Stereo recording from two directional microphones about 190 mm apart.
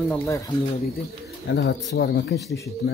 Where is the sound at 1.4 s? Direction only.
65° left (ahead or behind).